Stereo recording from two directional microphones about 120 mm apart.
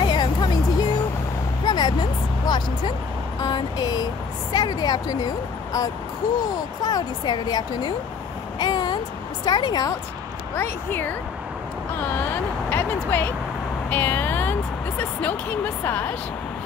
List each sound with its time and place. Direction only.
0.0 s music: 40° left (ahead or behind)
1.6 s a sound: 35° left (ahead or behind)
3.4 s speech: 35° left (ahead or behind)
8.5 s a sound: 35° left (ahead or behind)
9.4 s speech: 35° left (ahead or behind)
10.5 s speech: 20° left (ahead or behind)
12.6 s speech: 20° left (ahead or behind)
13.8 s music: 15° left (ahead or behind)
15.8 s speech: 15° left (ahead or behind)